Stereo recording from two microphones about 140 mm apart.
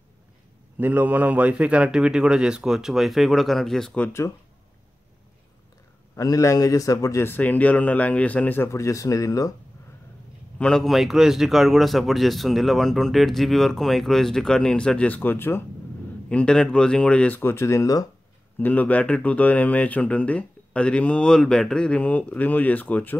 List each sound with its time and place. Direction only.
0.7 s a man's voice: 15° right (ahead or behind); by 4.3 s 15° left (ahead or behind)
6.1 s a man's voice: 25° left (ahead or behind)
10.6 s a man's voice: 5° left (ahead or behind); by 18.0 s 25° left (ahead or behind)
18.6 s speech: 10° left (ahead or behind)